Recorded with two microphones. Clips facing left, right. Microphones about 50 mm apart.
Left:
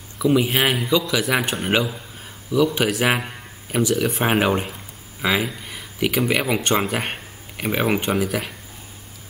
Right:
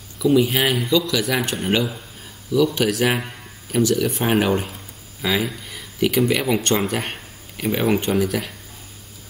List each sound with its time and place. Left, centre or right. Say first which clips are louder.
0.3 s speech: right 1 dB; centre